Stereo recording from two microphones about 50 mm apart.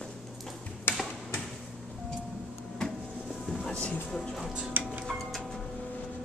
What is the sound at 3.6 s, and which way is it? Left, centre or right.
Speech, left.